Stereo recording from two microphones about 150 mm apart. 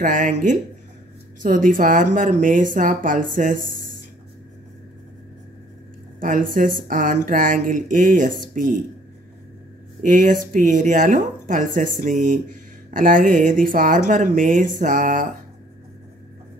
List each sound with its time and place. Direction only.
0.0 s speech: 60° right (ahead or behind)
6.1 s speech: 65° right (ahead or behind)
10.0 s speech: 60° right (ahead or behind)